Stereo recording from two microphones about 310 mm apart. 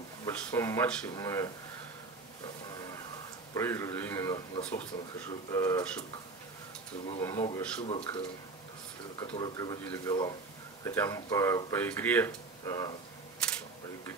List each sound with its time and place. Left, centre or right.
0.2 s speech: centre
3.5 s speech: centre
7.2 s speech: centre
9.2 s speech: centre